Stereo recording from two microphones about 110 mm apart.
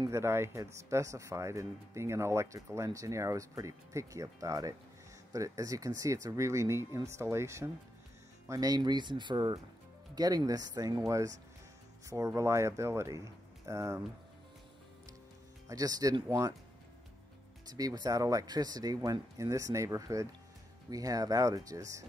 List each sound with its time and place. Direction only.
0.1 s speech: 25° right (ahead or behind)
15.7 s speech: 35° right (ahead or behind)
17.6 s speech: 35° right (ahead or behind)